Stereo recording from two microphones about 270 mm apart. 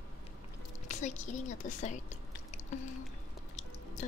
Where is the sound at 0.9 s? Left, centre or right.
Left.